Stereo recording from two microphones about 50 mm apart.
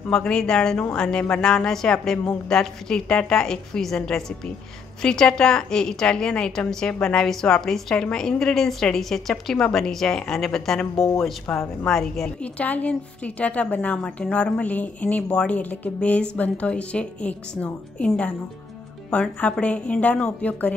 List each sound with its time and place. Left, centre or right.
0.1 s a woman's voice: centre
11.0 s speech: left
11.5 s speech: left
11.8 s a woman's voice: centre
12.4 s speech: left